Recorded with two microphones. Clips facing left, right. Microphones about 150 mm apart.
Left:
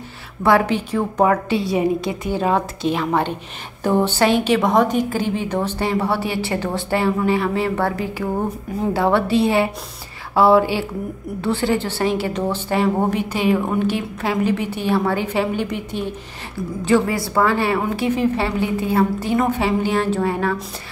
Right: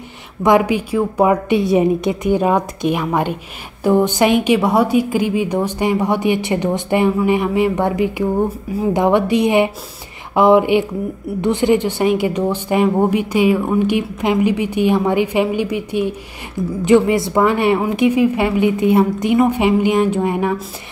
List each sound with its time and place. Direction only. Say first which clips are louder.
0.4 s a woman's voice: right 3 dB; 15° right (ahead or behind)